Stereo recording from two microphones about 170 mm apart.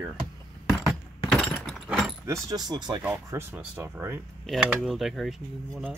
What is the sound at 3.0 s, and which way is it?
Speech, 15° right (ahead or behind).